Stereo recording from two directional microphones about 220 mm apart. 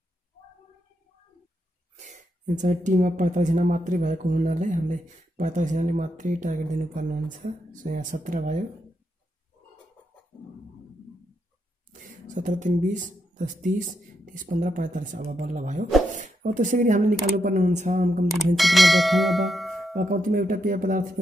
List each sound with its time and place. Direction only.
2.0 s speech: 35° right (ahead or behind)
11.9 s speech: 35° right (ahead or behind)
18.6 s speech: centre (ahead or behind)
20.0 s speech: 40° right (ahead or behind)